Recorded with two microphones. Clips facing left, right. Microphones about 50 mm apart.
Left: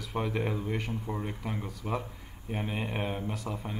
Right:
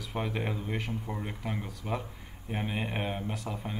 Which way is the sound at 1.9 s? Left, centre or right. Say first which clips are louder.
Left 1 dB; centre.